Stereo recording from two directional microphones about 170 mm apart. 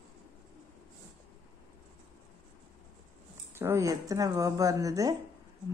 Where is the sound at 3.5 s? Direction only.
15° right (ahead or behind).